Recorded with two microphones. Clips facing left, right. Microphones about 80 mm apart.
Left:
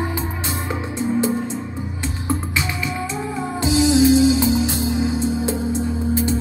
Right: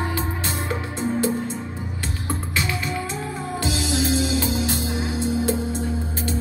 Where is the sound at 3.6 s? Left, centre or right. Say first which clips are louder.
Left 10 dB; left.